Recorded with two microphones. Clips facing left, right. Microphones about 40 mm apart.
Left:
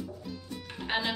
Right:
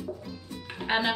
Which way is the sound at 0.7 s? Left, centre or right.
Centre.